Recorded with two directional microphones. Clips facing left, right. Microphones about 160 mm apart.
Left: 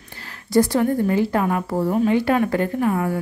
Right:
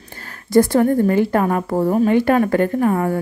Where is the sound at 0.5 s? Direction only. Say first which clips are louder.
Right 4 dB; 50° right (ahead or behind).